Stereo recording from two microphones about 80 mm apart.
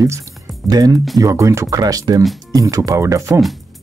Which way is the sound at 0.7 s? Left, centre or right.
Right.